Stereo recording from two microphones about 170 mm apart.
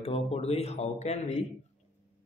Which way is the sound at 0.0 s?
35° left (ahead or behind).